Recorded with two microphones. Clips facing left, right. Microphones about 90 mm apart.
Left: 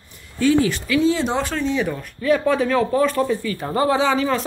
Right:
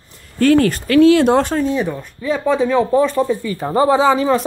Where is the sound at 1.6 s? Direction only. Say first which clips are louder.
Right 4 dB; 40° right (ahead or behind).